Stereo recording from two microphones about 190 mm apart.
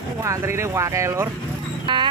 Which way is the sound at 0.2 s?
15° right (ahead or behind).